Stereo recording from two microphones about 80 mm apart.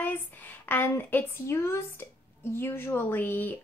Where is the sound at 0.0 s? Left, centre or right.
Left.